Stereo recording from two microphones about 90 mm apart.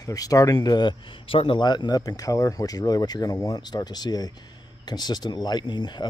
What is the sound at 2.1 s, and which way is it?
Speech, 40° left (ahead or behind).